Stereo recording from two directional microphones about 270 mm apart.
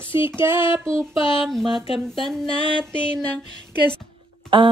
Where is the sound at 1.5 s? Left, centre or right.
Centre.